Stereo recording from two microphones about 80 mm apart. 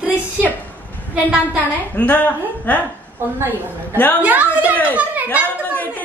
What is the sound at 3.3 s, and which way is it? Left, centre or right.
Speech, right.